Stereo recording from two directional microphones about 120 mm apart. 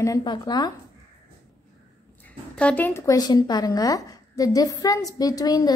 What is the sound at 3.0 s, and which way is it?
A woman's voice, 30° left (ahead or behind).